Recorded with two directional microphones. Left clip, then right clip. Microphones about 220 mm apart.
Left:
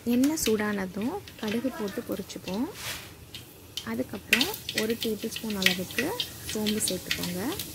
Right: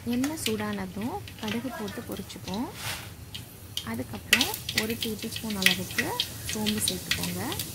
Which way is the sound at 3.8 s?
15° left (ahead or behind).